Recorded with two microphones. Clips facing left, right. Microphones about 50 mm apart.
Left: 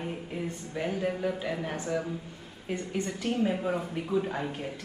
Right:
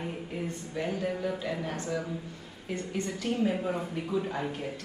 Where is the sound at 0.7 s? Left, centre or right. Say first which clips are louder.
Left 1 dB; centre.